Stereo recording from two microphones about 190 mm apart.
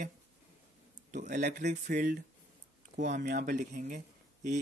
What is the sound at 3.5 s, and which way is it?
Speech, 40° right (ahead or behind).